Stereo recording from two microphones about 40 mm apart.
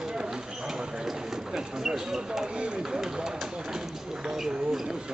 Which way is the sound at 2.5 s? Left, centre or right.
Right.